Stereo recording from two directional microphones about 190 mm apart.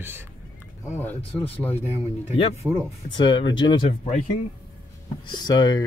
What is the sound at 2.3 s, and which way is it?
Speech, 35° left (ahead or behind).